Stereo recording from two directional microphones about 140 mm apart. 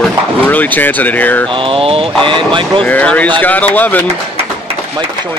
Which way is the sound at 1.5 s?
40° right (ahead or behind).